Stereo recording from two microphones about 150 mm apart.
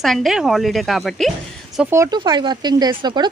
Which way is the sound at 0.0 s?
Centre (ahead or behind).